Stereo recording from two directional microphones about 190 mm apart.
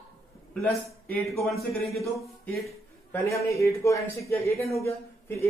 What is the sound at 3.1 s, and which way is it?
A man's voice, 15° left (ahead or behind).